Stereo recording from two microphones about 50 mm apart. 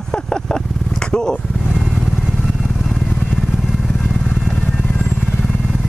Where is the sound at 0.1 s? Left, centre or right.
Centre.